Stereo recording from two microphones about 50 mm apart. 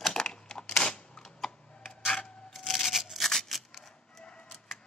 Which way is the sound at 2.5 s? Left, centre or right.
Centre.